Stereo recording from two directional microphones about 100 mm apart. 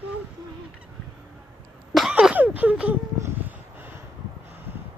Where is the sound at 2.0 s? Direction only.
5° right (ahead or behind).